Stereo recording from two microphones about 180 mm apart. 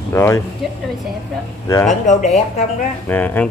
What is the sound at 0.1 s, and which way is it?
Speech, 15° left (ahead or behind).